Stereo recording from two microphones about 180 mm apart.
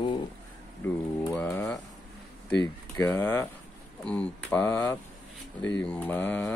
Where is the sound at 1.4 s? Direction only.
15° left (ahead or behind).